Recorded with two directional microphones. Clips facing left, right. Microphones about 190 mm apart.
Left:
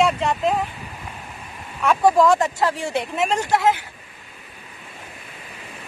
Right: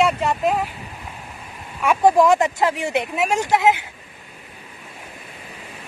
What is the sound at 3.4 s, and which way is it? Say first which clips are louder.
Speech: right 3 dB; 15° right (ahead or behind).